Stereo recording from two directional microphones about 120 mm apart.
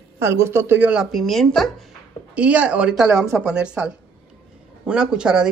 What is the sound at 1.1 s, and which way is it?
Speech, centre (ahead or behind).